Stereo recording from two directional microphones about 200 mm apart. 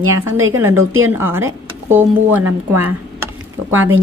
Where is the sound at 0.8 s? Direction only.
90° right.